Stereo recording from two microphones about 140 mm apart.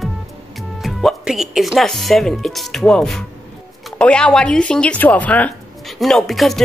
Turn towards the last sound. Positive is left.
turn(degrees=0)  # may be behind; listen again after turning